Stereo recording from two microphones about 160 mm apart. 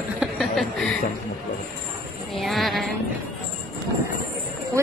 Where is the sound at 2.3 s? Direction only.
Centre (ahead or behind).